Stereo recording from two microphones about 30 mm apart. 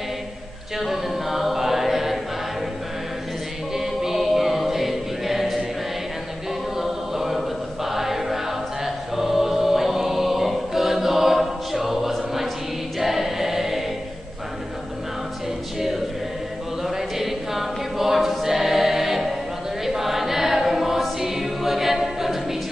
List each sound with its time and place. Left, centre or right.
0.7 s a capella: centre
3.7 s choir: centre
6.8 s choir: centre
16.8 s choir: centre